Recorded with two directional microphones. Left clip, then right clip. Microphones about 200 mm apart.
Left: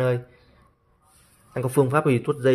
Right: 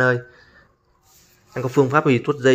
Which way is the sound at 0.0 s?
5° left (ahead or behind).